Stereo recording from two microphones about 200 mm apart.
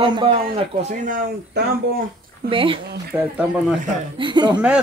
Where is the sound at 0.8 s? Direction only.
40° right (ahead or behind).